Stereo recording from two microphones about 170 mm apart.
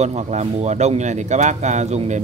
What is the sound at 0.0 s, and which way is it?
Speech, 40° right (ahead or behind).